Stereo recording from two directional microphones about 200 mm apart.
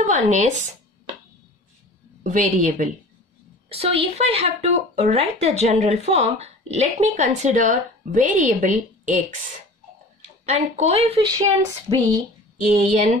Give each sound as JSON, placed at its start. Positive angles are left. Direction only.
{"t": 0.0, "sound": "a woman's voice", "side_deg": -35}
{"t": 2.2, "sound": "a woman's voice", "side_deg": -35}
{"t": 10.4, "sound": "a woman's voice", "side_deg": -30}
{"t": 11.9, "sound": "speech", "side_deg": -20}
{"t": 12.7, "sound": "a woman's voice", "side_deg": -35}